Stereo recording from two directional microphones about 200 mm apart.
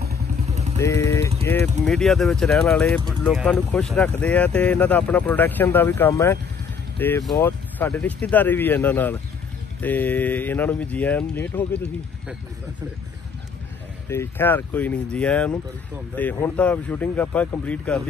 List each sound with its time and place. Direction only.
0.5 s vehicle: 35° right (ahead or behind)
0.7 s vehicle: 15° left (ahead or behind)
1.4 s speech: 10° left (ahead or behind)
14.0 s speech: 10° left (ahead or behind)